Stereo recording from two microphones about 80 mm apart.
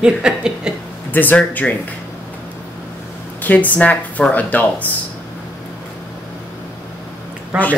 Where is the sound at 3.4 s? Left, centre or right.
Left.